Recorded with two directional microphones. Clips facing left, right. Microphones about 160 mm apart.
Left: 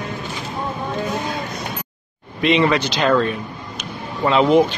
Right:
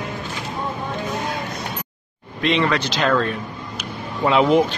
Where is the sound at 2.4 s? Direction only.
5° left (ahead or behind).